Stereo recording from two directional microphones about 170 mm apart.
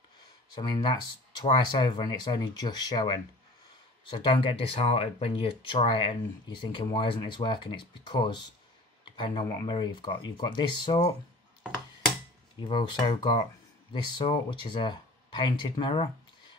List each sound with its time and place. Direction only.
0.6 s speech: 25° left (ahead or behind)
12.5 s speech: 25° left (ahead or behind)